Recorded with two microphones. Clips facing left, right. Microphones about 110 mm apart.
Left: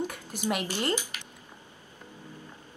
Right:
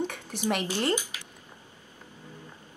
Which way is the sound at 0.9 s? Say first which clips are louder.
Right 1 dB; 15° right (ahead or behind).